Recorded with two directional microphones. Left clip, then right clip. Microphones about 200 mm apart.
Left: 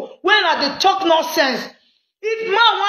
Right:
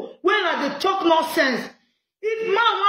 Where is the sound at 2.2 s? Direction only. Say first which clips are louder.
Left 5 dB; 15° right (ahead or behind).